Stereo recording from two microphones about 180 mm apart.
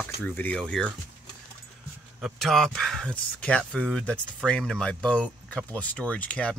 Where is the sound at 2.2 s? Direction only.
Centre (ahead or behind).